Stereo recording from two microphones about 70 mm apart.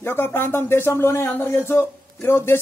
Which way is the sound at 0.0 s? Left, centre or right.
Left.